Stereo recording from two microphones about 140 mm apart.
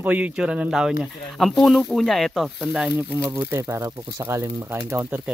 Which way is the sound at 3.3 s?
20° right (ahead or behind).